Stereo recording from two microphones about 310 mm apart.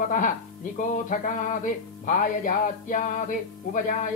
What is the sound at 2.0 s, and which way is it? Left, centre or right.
Music, left.